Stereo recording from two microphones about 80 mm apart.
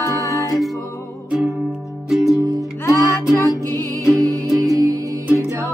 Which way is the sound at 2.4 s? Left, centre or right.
Right.